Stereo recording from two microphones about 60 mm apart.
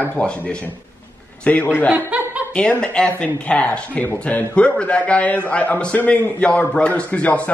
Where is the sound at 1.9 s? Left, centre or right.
Right.